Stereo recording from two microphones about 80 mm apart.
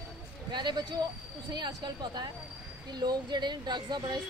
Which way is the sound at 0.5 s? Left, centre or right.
Right.